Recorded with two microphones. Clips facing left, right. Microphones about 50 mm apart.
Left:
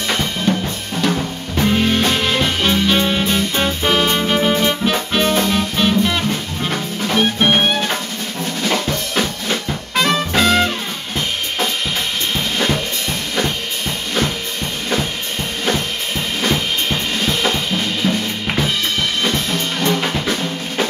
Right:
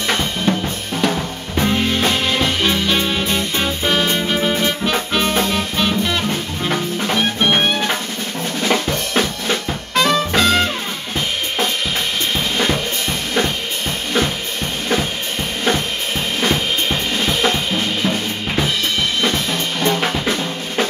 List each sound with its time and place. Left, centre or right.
0.1 s drum: centre
1.0 s music: centre
8.6 s drum: centre
9.2 s drum: centre
9.9 s music: centre
12.5 s drum kit: centre
16.3 s drum kit: centre
19.9 s drum kit: centre